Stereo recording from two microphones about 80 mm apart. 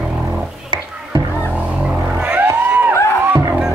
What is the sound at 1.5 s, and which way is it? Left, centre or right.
Vehicle, centre.